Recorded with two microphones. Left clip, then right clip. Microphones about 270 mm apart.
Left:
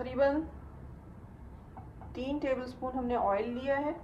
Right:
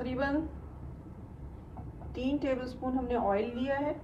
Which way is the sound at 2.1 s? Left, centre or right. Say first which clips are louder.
Right 1 dB; centre.